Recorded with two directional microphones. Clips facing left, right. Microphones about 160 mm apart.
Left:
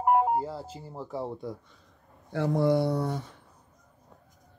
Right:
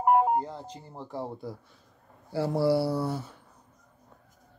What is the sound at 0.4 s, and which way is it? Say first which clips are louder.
Speech: left 1 dB; 5° left (ahead or behind).